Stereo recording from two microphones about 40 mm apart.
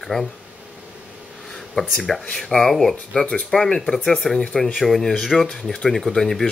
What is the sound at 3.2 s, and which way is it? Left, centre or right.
Speech, left.